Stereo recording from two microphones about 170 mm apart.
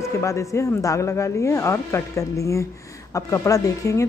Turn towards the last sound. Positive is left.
turn(degrees=20)  # may be behind; listen again after turning